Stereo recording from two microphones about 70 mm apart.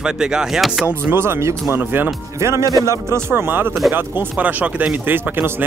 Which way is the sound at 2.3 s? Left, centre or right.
Right.